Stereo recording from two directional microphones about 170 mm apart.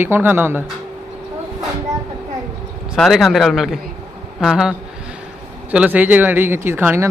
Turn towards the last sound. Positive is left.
turn(degrees=-15)  # may be behind; listen again after turning